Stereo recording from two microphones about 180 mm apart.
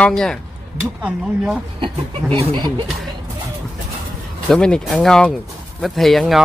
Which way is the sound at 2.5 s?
25° right (ahead or behind).